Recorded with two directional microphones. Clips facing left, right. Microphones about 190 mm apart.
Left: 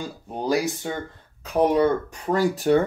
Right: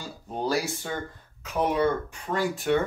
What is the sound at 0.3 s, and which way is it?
Speech, 15° left (ahead or behind).